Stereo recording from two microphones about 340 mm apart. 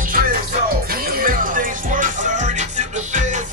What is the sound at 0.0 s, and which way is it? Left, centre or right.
Music, right.